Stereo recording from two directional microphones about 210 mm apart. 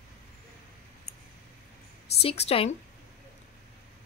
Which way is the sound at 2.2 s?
30° left (ahead or behind).